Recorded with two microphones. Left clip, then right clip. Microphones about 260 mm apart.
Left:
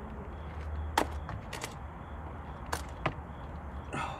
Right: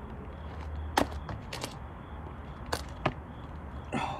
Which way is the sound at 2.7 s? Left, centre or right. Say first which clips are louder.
Right 3 dB; right.